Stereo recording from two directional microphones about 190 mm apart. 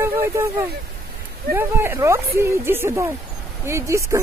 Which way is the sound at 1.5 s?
10° right (ahead or behind).